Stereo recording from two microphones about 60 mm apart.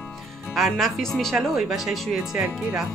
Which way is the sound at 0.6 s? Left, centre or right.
Centre.